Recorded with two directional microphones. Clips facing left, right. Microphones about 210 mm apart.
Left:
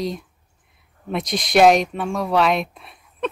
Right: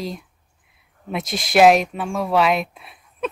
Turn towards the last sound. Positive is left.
turn(degrees=0)  # may be behind; listen again after turning